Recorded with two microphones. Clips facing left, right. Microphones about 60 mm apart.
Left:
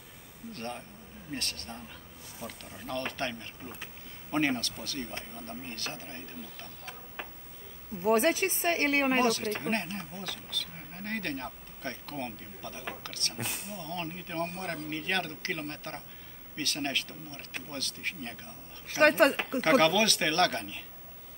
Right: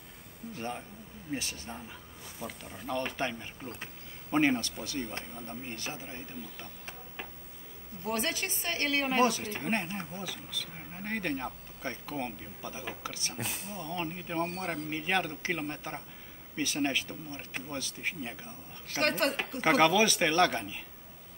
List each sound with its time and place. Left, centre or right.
0.5 s speech: centre
8.3 s a woman's voice: left
8.9 s speech: left
9.2 s speech: centre
13.8 s speech: centre
19.3 s speech: centre